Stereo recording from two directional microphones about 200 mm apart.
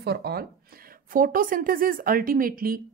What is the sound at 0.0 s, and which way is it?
A woman's voice, 55° right (ahead or behind).